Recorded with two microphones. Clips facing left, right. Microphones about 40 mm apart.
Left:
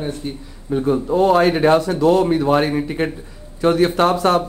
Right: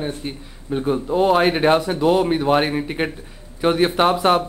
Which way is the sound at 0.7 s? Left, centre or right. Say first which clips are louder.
Left 3 dB; right.